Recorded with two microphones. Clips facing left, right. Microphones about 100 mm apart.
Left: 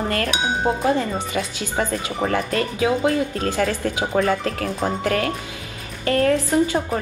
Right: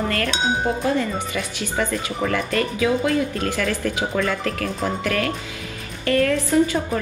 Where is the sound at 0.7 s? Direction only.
25° left (ahead or behind).